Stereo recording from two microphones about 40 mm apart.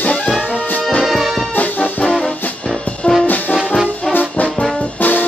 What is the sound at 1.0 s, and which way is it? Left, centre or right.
Music, centre.